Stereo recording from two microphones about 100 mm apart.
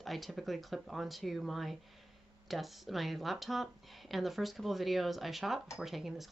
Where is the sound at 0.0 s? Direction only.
Centre (ahead or behind).